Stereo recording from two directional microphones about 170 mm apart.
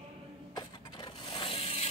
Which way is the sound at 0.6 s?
30° left (ahead or behind).